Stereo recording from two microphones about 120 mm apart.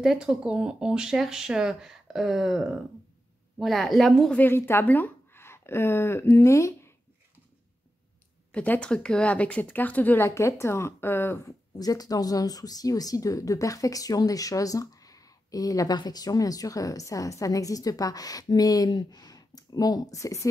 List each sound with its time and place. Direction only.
0.0 s speech: 5° right (ahead or behind)
4.4 s a woman's voice: 20° left (ahead or behind)
8.5 s speech: 10° left (ahead or behind); by 20.4 s 25° left (ahead or behind)